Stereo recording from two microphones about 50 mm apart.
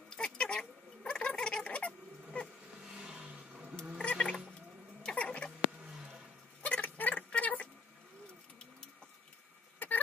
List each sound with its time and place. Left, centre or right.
0.1 s fowl: centre
2.8 s vehicle: centre
4.0 s a sound: left
5.0 s cat: left
6.6 s a sound: left
9.8 s vehicle: left